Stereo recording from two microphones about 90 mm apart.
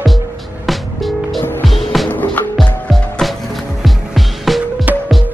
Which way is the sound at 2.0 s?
20° left (ahead or behind).